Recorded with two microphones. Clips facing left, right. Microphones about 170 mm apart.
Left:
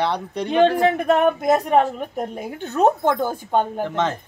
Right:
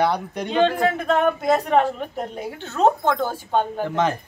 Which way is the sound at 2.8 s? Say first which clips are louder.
Left 1 dB; 15° left (ahead or behind).